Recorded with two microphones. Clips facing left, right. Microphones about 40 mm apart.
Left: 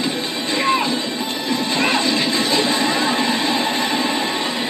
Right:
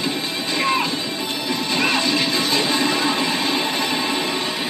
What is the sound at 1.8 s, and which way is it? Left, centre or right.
Music, left.